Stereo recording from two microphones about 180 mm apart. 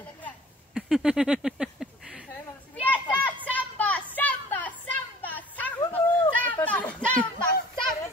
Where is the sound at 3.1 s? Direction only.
10° left (ahead or behind).